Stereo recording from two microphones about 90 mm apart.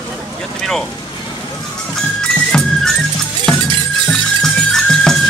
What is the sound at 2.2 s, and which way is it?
Music, 10° left (ahead or behind).